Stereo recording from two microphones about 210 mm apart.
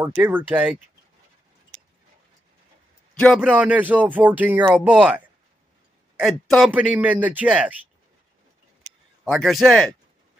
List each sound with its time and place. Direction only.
0.0 s speech: 10° right (ahead or behind)
3.2 s a man's voice: centre (ahead or behind)
9.3 s a man's voice: centre (ahead or behind)